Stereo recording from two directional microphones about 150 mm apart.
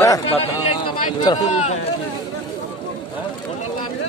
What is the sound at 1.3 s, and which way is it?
Speech, 25° left (ahead or behind).